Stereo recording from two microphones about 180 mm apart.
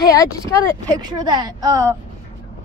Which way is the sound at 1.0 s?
25° right (ahead or behind).